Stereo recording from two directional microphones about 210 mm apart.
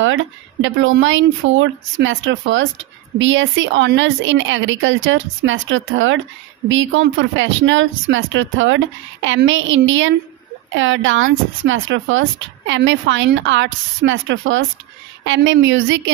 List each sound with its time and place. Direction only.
0.0 s speech: 65° right (ahead or behind)